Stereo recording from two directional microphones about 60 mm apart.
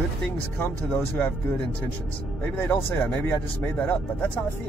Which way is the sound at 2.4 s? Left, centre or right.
Left.